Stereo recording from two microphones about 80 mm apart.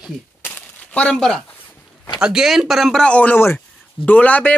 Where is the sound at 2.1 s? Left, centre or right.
Centre.